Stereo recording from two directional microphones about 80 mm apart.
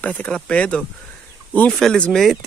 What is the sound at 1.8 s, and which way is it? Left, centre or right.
Speech, centre.